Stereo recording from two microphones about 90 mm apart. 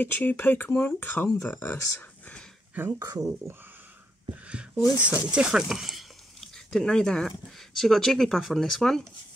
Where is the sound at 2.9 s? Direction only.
35° right (ahead or behind).